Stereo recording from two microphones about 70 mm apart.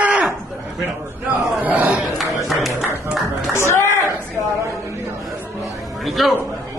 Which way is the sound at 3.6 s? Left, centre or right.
Left.